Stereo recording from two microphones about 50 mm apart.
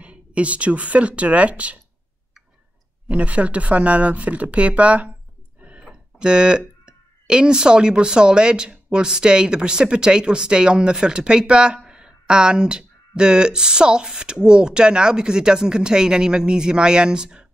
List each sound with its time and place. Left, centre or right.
0.0 s speech: right
3.1 s speech: right
5.6 s a sound: right
6.9 s speech: centre